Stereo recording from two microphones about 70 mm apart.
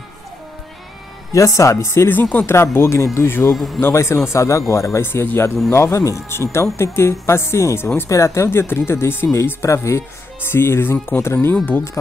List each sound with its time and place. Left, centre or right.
1.3 s speech: left
3.5 s speech: centre
3.8 s speech: left